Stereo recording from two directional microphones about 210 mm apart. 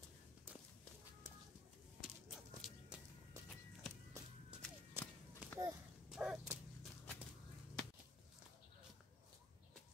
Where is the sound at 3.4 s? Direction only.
15° right (ahead or behind).